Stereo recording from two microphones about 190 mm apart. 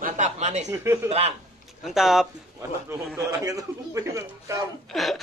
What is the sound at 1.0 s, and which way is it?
Speech, 30° right (ahead or behind).